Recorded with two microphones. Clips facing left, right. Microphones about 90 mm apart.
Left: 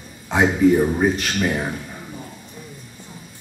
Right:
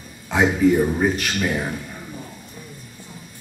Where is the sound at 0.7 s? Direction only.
10° left (ahead or behind).